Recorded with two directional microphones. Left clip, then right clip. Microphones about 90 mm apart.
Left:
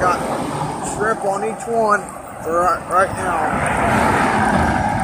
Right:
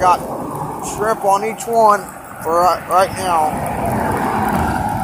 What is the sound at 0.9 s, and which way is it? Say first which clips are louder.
Speech: right 2 dB; 90° left.